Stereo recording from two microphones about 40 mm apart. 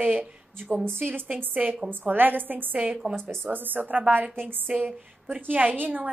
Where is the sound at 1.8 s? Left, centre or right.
Right.